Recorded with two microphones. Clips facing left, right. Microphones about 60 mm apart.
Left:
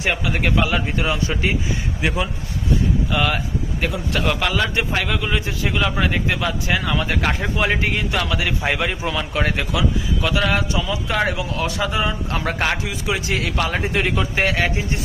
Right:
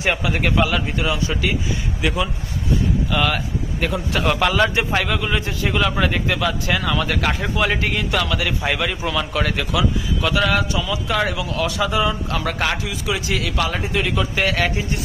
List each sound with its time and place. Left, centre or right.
0.0 s a man's voice: centre
0.9 s a man's voice: left
2.0 s a man's voice: left
3.1 s a man's voice: centre
10.2 s speech: centre
10.7 s a man's voice: left